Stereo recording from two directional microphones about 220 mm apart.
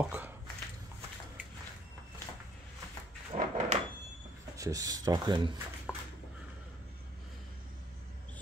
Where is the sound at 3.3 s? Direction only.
25° right (ahead or behind).